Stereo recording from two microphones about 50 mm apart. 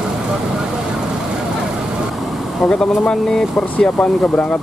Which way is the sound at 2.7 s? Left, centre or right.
Centre.